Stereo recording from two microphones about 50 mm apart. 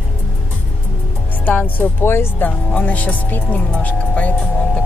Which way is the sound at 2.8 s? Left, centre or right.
Left.